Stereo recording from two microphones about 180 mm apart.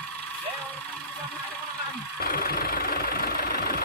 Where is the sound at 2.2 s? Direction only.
55° left (ahead or behind).